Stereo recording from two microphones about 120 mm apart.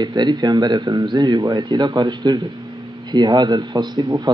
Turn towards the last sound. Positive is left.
turn(degrees=-35)  # may be behind; listen again after turning